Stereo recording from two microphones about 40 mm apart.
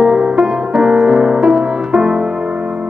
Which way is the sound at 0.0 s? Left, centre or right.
Right.